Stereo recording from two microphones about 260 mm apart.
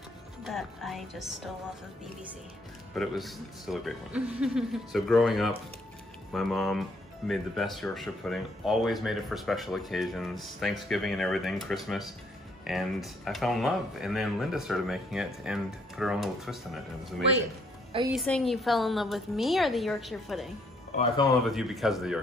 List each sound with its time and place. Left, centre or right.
0.5 s speech: centre
2.9 s speech: centre
18.1 s speech: centre
20.9 s speech: left
21.5 s speech: centre